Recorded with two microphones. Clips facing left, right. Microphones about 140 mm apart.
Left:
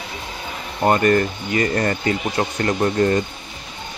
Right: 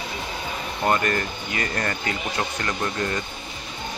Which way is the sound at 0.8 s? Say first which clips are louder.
Left 7 dB; 35° left (ahead or behind).